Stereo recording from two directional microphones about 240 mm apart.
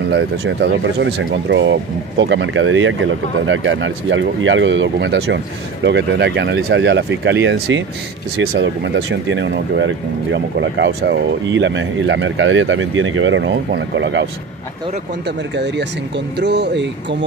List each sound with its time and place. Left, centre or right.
0.1 s speech: right
15.5 s speech: right